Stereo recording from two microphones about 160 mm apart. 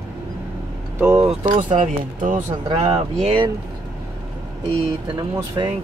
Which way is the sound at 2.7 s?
35° right (ahead or behind).